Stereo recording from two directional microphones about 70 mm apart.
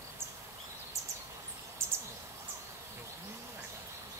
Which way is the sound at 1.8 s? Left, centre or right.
Right.